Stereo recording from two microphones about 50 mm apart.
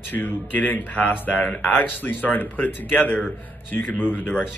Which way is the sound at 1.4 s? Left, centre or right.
Left.